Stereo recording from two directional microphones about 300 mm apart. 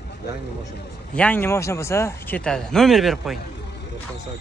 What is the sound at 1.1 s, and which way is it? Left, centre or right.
Speech, centre.